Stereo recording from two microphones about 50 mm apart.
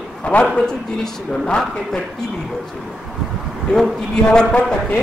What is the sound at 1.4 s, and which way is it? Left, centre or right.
Speech, centre.